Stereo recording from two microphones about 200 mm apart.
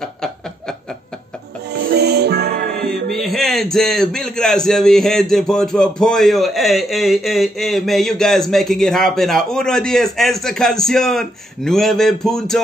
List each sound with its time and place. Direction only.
1.7 s music: 55° right (ahead or behind)
3.1 s a man's voice: centre (ahead or behind)